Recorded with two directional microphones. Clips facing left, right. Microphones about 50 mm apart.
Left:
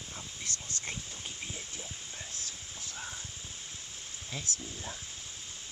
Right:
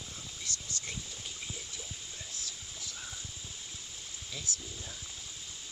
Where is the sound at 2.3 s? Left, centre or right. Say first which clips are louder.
Even; left.